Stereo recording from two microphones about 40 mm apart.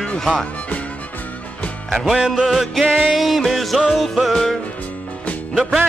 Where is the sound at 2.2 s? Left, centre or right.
Centre.